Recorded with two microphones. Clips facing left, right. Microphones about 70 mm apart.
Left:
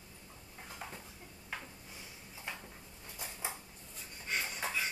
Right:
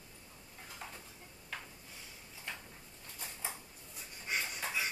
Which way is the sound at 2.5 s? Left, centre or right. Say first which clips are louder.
Left 1 dB; centre.